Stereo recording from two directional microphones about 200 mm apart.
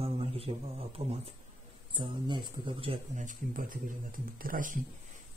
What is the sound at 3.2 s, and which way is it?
Speech, 40° right (ahead or behind).